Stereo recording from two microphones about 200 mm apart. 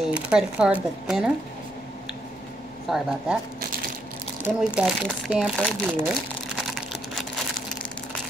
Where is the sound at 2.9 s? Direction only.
Centre (ahead or behind).